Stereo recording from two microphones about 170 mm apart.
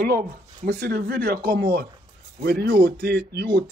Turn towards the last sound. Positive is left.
turn(degrees=-70)  # may be behind; listen again after turning